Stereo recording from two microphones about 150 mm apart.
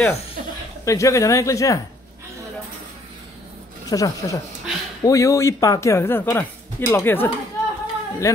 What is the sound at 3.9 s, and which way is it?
Speech, 25° left (ahead or behind).